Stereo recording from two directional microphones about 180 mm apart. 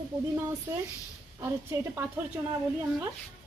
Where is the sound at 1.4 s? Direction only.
15° right (ahead or behind).